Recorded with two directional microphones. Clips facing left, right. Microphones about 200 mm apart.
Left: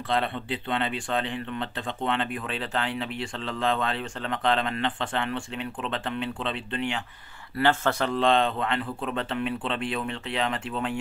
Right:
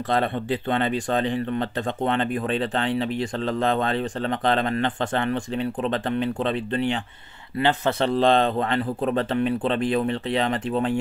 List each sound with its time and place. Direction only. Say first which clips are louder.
0.1 s speech: right 4 dB; 45° right (ahead or behind)
7.5 s speech: right 2 dB; 20° right (ahead or behind)
8.1 s speech: right 4 dB; 35° right (ahead or behind)